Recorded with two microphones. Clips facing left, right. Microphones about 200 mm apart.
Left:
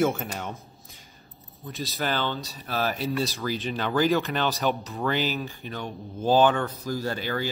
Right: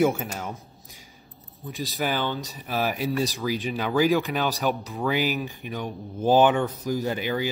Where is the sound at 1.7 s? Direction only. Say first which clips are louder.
Right 1 dB; 15° right (ahead or behind).